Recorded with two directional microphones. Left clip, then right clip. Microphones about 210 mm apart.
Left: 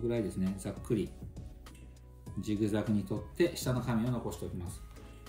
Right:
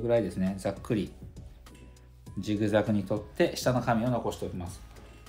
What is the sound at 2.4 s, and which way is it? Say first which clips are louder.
Speech: right 7 dB; 30° right (ahead or behind).